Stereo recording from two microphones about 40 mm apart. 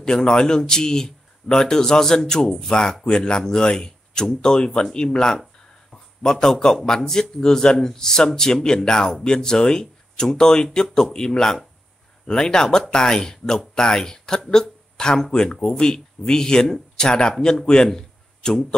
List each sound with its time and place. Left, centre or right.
0.0 s speech: centre
6.4 s speech: centre
17.8 s a sound: centre